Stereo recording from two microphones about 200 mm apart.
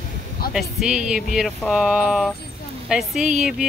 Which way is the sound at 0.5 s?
Centre (ahead or behind).